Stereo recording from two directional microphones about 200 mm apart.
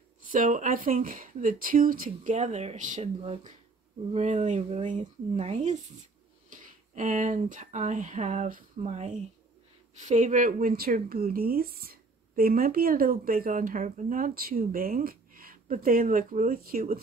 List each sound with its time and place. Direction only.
0.3 s speech: 40° right (ahead or behind)